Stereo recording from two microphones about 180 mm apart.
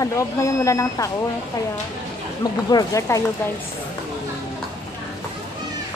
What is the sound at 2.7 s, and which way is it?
Speech, 20° left (ahead or behind).